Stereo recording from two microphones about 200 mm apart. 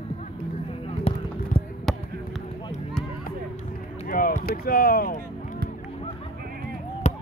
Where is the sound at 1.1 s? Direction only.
30° left (ahead or behind).